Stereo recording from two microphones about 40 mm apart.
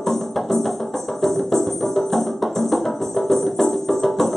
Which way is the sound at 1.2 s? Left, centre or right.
Centre.